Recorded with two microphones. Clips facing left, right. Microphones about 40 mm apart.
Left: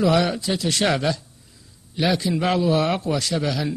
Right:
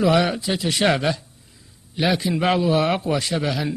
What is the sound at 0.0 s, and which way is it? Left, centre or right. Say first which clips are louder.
A man's voice: right 1 dB; centre.